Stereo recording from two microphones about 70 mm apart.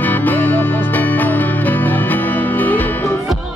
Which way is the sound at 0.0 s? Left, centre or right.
Left.